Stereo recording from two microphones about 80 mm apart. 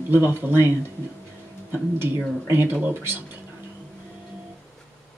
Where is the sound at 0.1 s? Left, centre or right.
Right.